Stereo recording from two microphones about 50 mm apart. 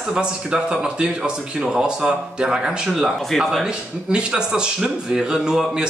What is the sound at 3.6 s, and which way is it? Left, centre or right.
Speech, centre.